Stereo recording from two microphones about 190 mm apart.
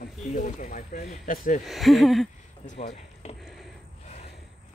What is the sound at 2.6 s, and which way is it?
Speech, 40° left (ahead or behind).